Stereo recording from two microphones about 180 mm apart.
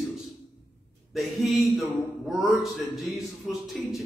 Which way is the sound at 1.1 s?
Centre (ahead or behind).